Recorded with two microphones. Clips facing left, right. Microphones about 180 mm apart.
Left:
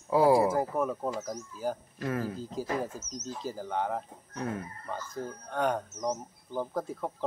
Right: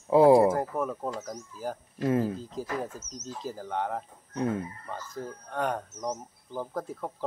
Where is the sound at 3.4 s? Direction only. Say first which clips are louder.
Even; centre (ahead or behind).